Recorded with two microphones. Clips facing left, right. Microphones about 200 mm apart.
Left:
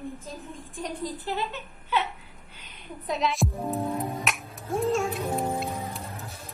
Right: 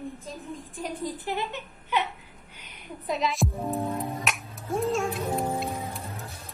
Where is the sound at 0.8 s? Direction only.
15° right (ahead or behind).